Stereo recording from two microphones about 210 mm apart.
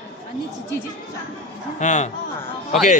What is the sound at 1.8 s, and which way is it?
Speech, 35° left (ahead or behind).